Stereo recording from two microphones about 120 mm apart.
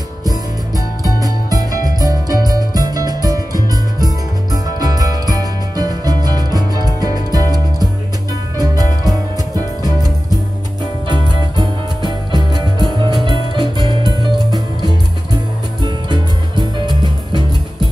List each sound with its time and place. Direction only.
0.2 s music: 30° right (ahead or behind)
11.1 s music: 35° right (ahead or behind)